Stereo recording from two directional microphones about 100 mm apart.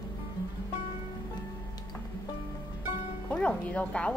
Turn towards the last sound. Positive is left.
turn(degrees=10)  # may be behind; listen again after turning